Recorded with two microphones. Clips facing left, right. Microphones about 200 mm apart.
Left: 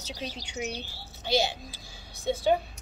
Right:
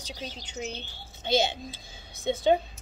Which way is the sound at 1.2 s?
25° right (ahead or behind).